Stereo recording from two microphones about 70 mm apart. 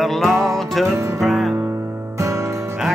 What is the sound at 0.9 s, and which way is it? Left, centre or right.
Music, right.